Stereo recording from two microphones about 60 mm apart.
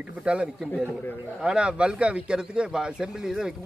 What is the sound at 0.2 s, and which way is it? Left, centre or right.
A man's voice, centre.